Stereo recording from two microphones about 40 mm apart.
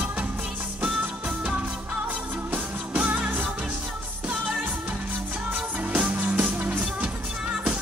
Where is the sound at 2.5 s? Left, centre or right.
Right.